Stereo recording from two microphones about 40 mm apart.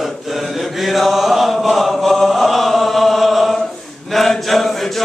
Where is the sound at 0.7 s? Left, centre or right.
Centre.